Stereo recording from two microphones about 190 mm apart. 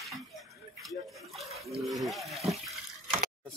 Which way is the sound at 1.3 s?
Centre (ahead or behind).